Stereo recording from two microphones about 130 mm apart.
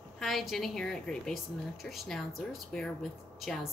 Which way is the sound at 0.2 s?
Centre (ahead or behind).